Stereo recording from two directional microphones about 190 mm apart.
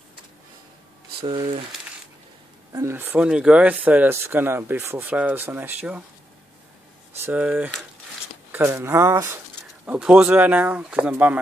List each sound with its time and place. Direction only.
1.2 s speech: 25° right (ahead or behind)
2.7 s speech: 15° right (ahead or behind)
7.2 s speech: 10° right (ahead or behind)
9.8 s speech: 5° right (ahead or behind)